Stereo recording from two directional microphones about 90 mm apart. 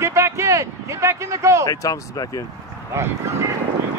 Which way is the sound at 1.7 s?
40° left (ahead or behind).